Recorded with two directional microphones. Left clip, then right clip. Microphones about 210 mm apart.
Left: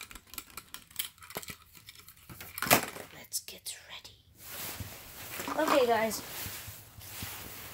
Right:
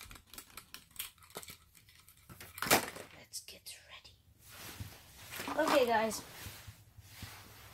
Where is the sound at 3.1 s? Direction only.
45° left (ahead or behind).